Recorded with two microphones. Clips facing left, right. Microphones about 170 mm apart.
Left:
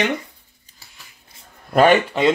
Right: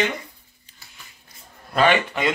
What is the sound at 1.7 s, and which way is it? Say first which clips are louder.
Speech: left 5 dB; 45° left (ahead or behind).